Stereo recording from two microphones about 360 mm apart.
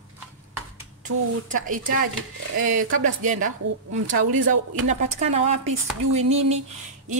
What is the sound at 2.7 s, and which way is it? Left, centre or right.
Speech, right.